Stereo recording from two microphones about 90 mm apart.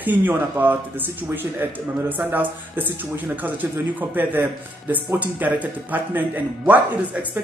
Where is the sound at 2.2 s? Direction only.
20° right (ahead or behind).